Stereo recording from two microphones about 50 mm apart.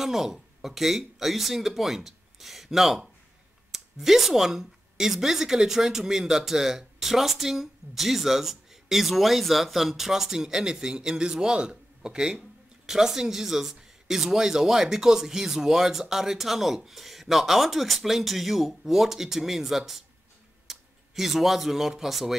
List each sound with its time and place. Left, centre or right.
0.0 s speech: centre